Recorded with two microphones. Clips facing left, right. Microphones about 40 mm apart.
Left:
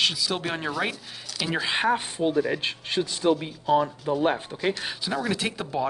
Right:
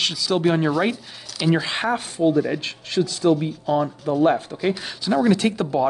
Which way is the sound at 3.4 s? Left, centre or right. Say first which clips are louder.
Right 1 dB; centre.